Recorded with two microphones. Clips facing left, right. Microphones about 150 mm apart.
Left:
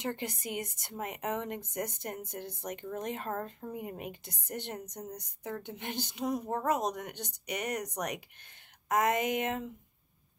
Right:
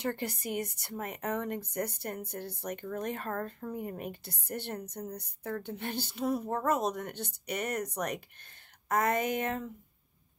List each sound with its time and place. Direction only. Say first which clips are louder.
0.0 s a woman's voice: right 2 dB; 20° left (ahead or behind)